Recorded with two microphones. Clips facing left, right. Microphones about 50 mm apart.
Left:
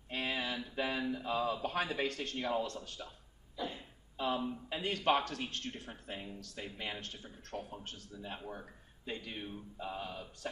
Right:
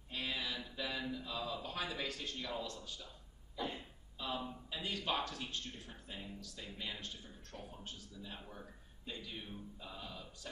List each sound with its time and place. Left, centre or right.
0.1 s mantra: left
1.1 s speech: left
3.6 s cough: centre
4.2 s a man's voice: left
5.9 s speech: left